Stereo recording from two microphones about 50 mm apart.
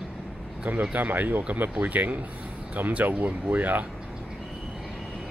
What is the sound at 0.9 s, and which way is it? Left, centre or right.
Speech, right.